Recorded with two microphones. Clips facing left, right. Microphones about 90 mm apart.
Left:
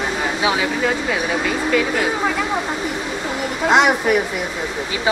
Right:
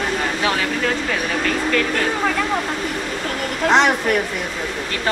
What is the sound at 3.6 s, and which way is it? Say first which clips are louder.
Speech: left 1 dB; 10° left (ahead or behind).